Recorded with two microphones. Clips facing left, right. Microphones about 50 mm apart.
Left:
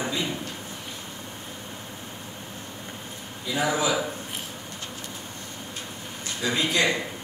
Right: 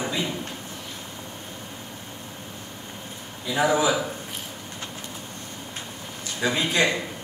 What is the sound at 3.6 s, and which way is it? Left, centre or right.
Speech, centre.